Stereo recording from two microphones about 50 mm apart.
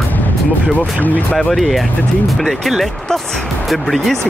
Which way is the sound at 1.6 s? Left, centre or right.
Centre.